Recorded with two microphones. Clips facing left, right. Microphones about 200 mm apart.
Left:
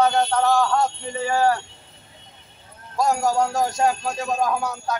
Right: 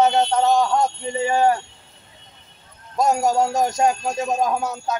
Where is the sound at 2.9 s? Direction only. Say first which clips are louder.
Right 2 dB; 20° right (ahead or behind).